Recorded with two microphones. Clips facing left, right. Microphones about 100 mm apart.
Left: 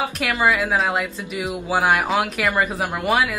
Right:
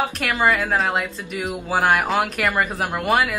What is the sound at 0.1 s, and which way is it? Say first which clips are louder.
Speech: even; 5° left (ahead or behind).